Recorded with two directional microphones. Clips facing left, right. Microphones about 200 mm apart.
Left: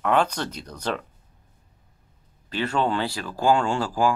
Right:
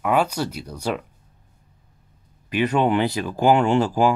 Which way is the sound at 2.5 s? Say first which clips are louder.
Right 5 dB; 15° right (ahead or behind).